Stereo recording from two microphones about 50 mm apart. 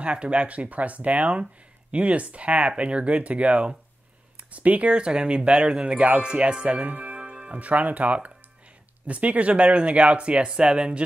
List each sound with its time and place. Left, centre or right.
0.0 s speech: right